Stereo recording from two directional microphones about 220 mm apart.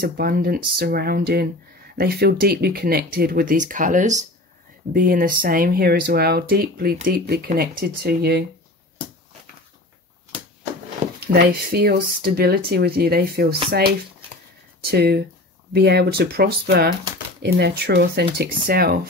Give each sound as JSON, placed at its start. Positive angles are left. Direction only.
{"t": 0.0, "sound": "speech", "side_deg": -45}
{"t": 11.1, "sound": "speech", "side_deg": -45}